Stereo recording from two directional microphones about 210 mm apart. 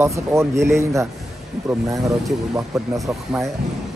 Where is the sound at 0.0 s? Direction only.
15° right (ahead or behind).